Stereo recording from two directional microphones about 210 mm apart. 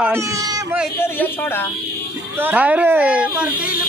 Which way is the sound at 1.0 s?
10° left (ahead or behind).